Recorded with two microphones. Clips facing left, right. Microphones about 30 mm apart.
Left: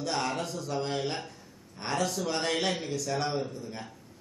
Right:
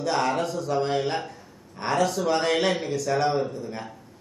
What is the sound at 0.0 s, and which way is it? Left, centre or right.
A man's voice, centre.